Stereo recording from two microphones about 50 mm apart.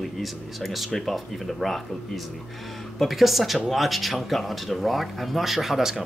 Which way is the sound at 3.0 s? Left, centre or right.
Centre.